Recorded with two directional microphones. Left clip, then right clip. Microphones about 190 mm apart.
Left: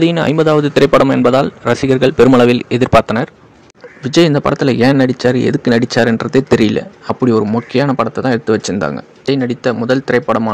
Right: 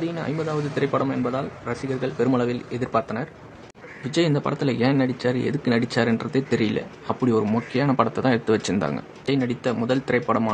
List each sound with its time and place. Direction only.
0.0 s a man's voice: 50° left (ahead or behind); by 10.5 s 30° left (ahead or behind)